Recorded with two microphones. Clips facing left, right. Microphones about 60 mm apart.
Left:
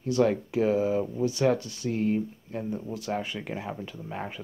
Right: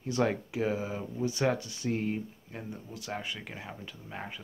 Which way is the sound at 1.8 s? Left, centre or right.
Right.